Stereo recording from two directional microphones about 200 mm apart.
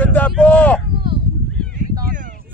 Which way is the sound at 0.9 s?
25° right (ahead or behind).